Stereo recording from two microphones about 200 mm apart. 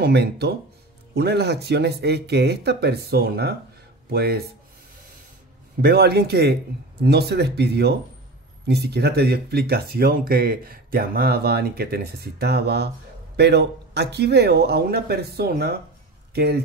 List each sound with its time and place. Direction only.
0.0 s speech: 55° right (ahead or behind)
5.8 s speech: 50° right (ahead or behind)